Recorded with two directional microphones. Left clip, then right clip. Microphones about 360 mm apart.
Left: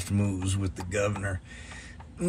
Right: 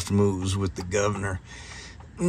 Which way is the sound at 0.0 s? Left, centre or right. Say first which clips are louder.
Right 8 dB; centre.